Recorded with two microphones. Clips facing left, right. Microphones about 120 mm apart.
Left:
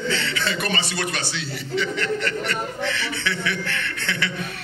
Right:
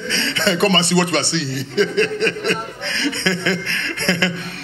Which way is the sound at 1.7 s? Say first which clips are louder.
Right 8 dB; 70° right (ahead or behind).